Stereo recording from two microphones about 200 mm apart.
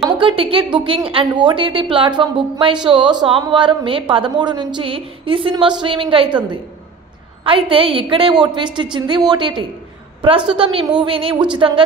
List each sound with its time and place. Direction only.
0.2 s a woman's voice: 25° right (ahead or behind)